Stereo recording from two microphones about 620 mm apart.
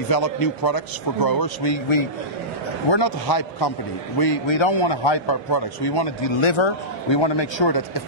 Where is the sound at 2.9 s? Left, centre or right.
Left.